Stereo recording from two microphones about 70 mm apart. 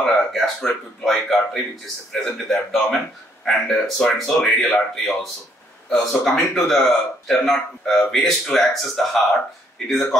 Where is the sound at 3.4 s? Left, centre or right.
Centre.